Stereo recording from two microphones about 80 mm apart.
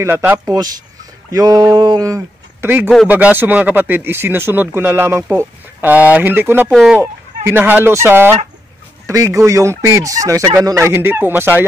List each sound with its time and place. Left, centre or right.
0.0 s speech: right
1.3 s a sound: right
2.6 s speech: right
9.0 s speech: right